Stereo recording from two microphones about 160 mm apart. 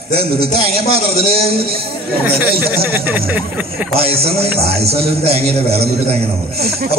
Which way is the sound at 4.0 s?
40° right (ahead or behind).